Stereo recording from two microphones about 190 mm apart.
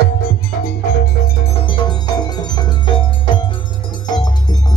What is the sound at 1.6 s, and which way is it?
Chime, 20° left (ahead or behind).